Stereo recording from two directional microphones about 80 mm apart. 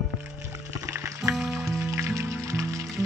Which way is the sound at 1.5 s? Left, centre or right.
Right.